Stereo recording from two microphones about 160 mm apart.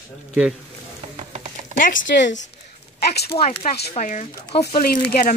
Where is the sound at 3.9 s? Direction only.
50° left (ahead or behind).